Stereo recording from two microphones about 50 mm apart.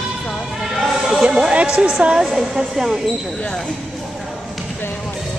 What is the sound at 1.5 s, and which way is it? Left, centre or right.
A woman's voice, right.